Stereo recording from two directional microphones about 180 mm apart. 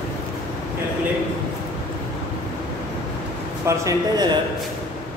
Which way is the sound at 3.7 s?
20° right (ahead or behind).